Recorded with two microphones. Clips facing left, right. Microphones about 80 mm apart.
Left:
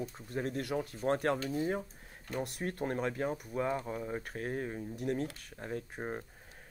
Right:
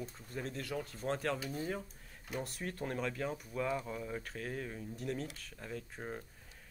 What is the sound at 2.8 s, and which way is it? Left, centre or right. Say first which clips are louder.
Speech: left 4 dB; left.